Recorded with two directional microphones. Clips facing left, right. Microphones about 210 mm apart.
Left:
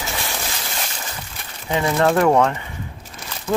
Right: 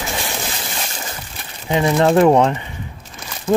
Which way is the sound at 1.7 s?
20° right (ahead or behind).